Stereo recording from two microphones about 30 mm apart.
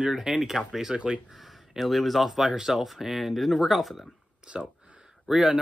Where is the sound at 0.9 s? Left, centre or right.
Right.